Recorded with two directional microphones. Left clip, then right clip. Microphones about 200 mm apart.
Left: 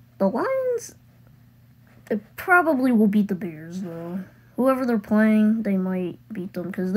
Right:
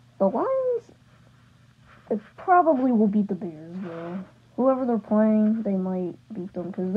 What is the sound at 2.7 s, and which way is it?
Speech, 35° left (ahead or behind).